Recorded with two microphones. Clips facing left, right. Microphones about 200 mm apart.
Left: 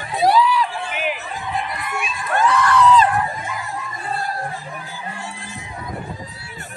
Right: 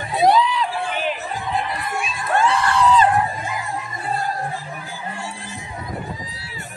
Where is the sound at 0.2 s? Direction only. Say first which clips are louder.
Even; 20° right (ahead or behind).